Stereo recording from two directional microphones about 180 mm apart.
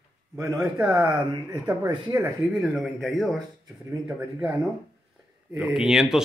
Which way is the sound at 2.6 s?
Centre (ahead or behind).